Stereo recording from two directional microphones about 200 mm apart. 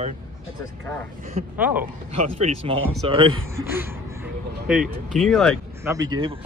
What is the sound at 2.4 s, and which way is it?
Speech, 25° right (ahead or behind).